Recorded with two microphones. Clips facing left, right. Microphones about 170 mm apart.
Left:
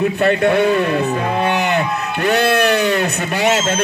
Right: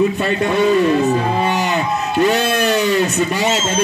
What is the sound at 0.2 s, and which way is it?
A man's voice, 60° left (ahead or behind).